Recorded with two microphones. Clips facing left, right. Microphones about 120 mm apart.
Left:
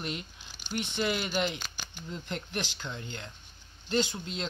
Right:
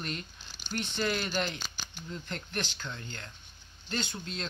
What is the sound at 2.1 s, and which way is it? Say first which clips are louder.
Speech: left 1 dB; 15° left (ahead or behind).